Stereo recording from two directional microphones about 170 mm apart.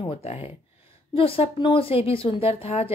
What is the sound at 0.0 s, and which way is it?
A woman's voice, 35° left (ahead or behind).